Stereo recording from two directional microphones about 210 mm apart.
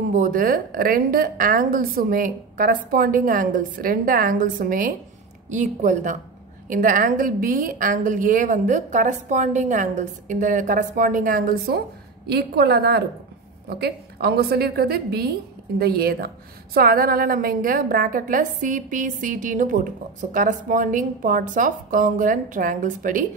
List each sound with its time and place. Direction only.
0.1 s a woman's voice: 40° right (ahead or behind)